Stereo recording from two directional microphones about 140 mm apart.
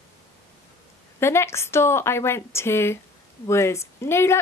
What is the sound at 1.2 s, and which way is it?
Speech, 20° left (ahead or behind).